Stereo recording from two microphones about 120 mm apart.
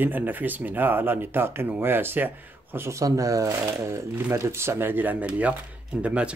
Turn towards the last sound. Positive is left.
turn(degrees=-10)  # may be behind; listen again after turning